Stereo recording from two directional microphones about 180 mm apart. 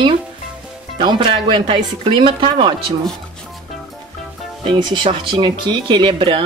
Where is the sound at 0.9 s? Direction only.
25° right (ahead or behind).